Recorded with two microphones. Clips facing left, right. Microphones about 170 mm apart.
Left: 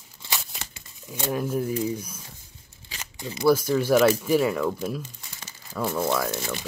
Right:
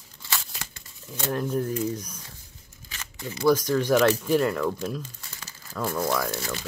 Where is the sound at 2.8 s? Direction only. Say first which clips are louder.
Left 1 dB; 25° left (ahead or behind).